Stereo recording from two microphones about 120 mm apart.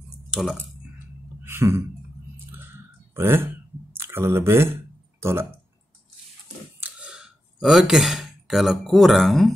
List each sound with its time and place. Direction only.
0.3 s speech: centre (ahead or behind)
1.4 s a sound: 20° right (ahead or behind)
2.3 s clicking: 20° right (ahead or behind)
5.2 s speech: 20° right (ahead or behind)
6.8 s a sound: 10° right (ahead or behind)
7.6 s speech: 5° right (ahead or behind)